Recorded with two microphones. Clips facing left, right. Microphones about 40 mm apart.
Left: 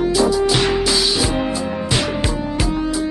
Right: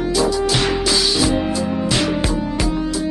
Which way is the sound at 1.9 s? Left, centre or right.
Centre.